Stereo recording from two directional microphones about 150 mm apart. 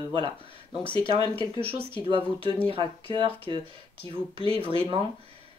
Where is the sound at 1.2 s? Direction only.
30° left (ahead or behind).